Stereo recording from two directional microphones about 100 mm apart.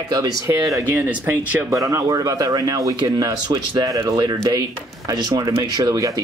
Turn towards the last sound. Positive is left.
turn(degrees=-35)  # may be behind; listen again after turning